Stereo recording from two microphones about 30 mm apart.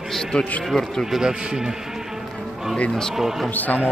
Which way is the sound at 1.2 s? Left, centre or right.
Right.